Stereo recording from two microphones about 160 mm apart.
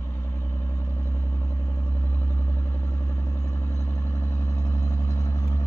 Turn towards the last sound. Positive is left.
turn(degrees=20)  # may be behind; listen again after turning